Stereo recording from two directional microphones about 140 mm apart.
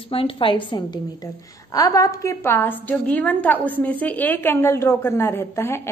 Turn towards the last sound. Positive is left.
turn(degrees=20)  # may be behind; listen again after turning